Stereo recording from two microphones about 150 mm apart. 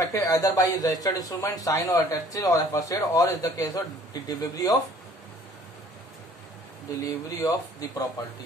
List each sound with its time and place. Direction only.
0.0 s speech: 20° left (ahead or behind)
7.0 s speech: 25° left (ahead or behind)